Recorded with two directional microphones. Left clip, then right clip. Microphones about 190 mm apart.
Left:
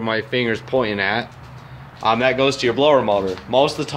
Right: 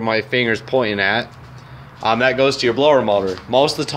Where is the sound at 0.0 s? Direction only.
15° right (ahead or behind).